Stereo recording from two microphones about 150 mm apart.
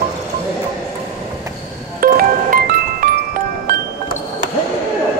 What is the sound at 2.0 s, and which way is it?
Music, 75° right (ahead or behind).